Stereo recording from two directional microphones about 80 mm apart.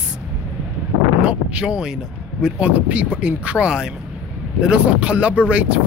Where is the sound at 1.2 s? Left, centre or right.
Centre.